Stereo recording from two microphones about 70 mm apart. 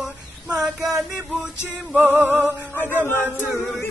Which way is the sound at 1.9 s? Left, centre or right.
Right.